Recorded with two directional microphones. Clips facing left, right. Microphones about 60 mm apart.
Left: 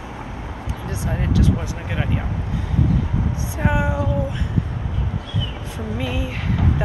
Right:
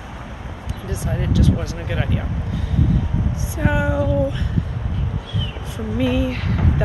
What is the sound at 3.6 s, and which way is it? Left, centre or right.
Speech, centre.